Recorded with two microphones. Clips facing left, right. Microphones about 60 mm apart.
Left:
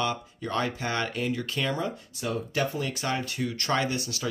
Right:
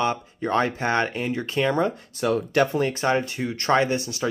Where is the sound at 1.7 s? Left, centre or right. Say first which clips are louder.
Right 8 dB; right.